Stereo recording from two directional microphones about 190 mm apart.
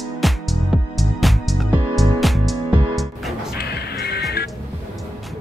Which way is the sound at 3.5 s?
55° left (ahead or behind).